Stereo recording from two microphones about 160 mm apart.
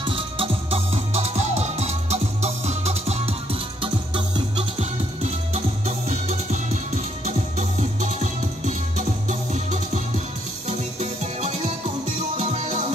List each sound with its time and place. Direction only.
0.0 s music: 35° right (ahead or behind)